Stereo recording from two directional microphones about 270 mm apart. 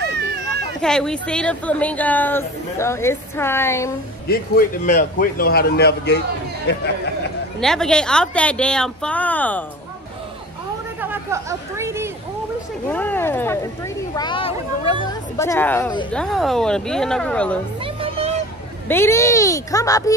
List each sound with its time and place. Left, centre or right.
0.7 s speech: centre
4.3 s speech: left
7.6 s speech: centre
11.0 s speech: centre
12.9 s speech: centre
17.8 s music: right
18.9 s speech: centre